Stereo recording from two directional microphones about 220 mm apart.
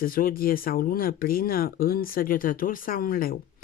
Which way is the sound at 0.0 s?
40° left (ahead or behind).